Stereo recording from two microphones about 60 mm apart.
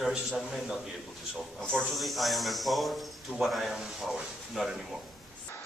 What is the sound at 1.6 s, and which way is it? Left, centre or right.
Speech, centre.